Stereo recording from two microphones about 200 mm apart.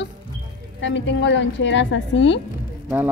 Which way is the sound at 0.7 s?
65° left (ahead or behind).